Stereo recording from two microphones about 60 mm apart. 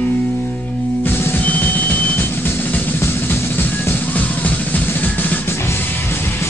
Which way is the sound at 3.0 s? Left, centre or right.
Left.